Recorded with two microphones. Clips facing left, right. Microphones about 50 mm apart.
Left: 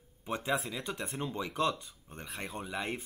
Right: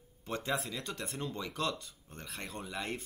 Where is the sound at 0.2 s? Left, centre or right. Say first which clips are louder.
Left 2 dB; centre.